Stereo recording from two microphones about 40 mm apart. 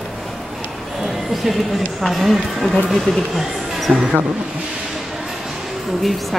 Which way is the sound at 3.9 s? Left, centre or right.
Centre.